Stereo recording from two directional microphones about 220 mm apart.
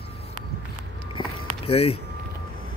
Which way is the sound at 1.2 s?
20° left (ahead or behind).